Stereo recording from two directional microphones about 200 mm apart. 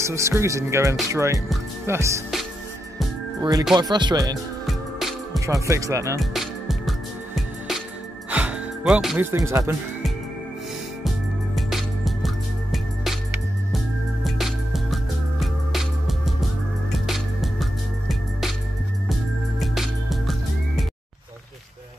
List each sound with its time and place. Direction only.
0.0 s speech: 15° right (ahead or behind)
3.3 s speech: 20° right (ahead or behind)
4.6 s music: centre (ahead or behind)
5.5 s speech: 15° right (ahead or behind)
6.3 s music: centre (ahead or behind)
8.3 s speech: 5° right (ahead or behind)
11.1 s music: centre (ahead or behind)
14.2 s music: centre (ahead or behind)
19.6 s music: centre (ahead or behind)